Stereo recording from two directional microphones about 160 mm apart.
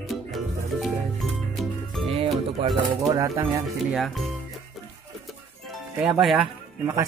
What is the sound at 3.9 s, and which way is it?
Speech, centre (ahead or behind).